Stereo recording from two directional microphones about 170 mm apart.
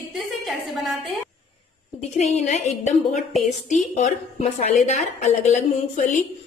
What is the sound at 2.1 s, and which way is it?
A woman's voice, 40° left (ahead or behind).